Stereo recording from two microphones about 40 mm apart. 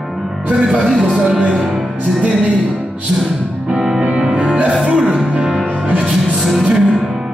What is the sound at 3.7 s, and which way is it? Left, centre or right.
Music, centre.